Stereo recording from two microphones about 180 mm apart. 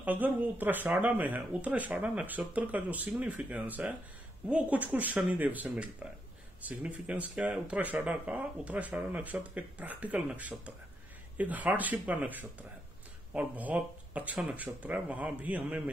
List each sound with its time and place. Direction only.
0.0 s speech: 10° right (ahead or behind)